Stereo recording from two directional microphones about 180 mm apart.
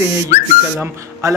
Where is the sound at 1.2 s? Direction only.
15° right (ahead or behind).